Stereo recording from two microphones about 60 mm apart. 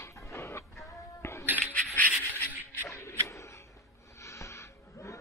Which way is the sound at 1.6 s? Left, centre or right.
Left.